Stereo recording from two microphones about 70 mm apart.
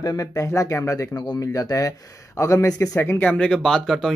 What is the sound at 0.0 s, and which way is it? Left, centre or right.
Speech, left.